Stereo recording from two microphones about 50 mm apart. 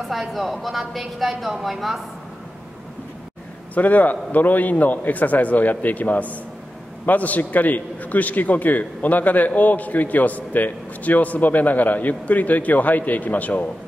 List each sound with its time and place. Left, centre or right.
0.1 s a woman's voice: centre
3.7 s a man's voice: left